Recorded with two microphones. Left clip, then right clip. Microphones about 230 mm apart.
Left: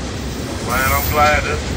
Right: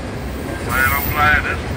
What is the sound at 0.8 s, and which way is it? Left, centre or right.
Vehicle, left.